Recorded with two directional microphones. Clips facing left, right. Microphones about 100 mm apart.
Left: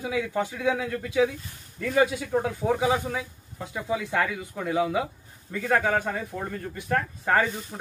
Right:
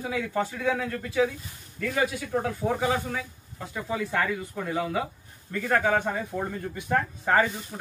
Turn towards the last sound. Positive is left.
turn(degrees=0)  # may be behind; listen again after turning